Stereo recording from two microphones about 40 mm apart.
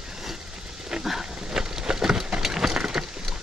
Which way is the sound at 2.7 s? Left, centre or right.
Right.